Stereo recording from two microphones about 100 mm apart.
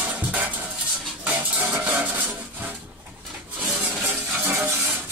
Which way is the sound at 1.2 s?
15° right (ahead or behind).